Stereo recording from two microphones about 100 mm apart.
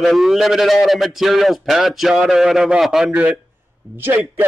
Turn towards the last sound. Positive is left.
turn(degrees=-20)  # may be behind; listen again after turning